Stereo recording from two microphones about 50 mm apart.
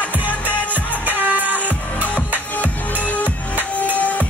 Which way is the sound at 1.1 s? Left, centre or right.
Right.